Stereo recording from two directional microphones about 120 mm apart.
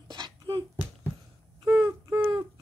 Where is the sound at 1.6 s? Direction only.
35° right (ahead or behind).